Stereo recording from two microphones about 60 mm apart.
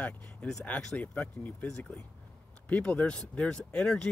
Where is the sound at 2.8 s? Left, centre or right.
Centre.